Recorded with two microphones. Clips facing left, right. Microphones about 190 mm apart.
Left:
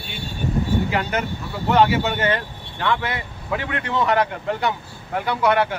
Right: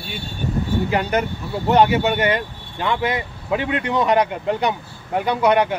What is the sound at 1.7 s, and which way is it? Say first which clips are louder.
Speech: right 2 dB; 15° right (ahead or behind).